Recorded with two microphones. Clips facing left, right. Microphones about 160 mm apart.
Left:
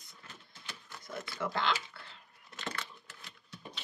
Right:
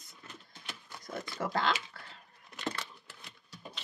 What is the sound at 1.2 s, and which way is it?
Speech, 40° right (ahead or behind).